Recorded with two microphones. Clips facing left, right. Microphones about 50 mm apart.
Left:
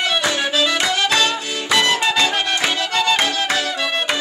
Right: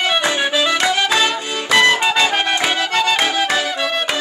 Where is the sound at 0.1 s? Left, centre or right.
Centre.